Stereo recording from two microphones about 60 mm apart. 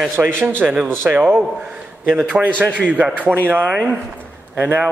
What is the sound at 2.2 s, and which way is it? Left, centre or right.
Speech, right.